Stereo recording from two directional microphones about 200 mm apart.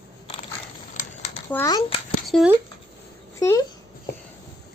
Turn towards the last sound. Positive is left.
turn(degrees=15)  # may be behind; listen again after turning